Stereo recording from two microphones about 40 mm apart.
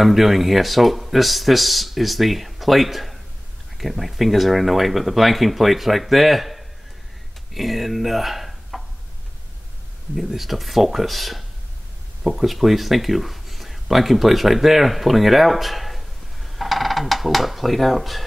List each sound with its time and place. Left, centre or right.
0.0 s speech: centre
10.1 s speech: centre